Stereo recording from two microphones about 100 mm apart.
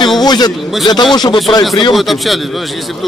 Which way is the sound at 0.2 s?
45° left (ahead or behind).